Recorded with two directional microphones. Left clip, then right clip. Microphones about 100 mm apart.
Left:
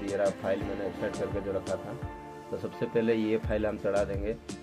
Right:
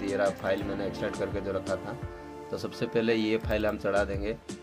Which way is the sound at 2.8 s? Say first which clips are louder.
Right 1 dB; 20° right (ahead or behind).